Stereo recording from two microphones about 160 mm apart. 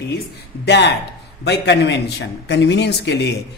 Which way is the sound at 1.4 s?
90° left.